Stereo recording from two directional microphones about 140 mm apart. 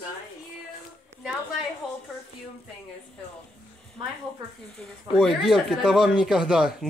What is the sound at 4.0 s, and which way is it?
Speech, 25° right (ahead or behind).